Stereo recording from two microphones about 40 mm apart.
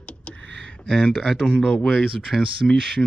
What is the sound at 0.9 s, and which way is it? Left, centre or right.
Speech, centre.